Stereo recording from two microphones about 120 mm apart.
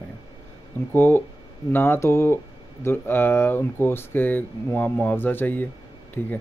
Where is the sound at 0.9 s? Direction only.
20° left (ahead or behind).